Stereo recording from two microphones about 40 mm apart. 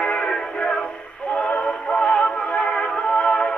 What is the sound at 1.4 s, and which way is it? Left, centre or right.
Music, left.